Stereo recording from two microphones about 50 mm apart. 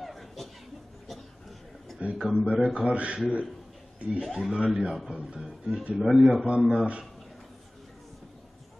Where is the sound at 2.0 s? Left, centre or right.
Right.